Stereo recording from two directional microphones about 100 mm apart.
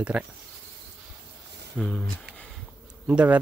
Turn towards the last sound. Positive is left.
turn(degrees=-10)  # may be behind; listen again after turning